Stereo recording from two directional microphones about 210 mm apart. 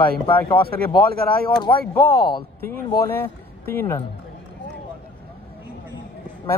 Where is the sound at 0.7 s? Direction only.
45° right (ahead or behind).